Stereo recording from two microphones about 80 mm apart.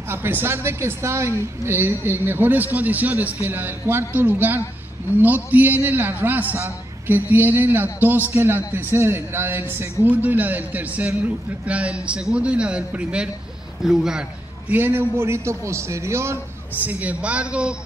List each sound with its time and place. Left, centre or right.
0.1 s a man's voice: right; by 14.2 s centre
14.7 s a man's voice: right
16.7 s a man's voice: right